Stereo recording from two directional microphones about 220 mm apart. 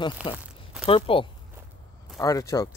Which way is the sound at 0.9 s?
25° left (ahead or behind).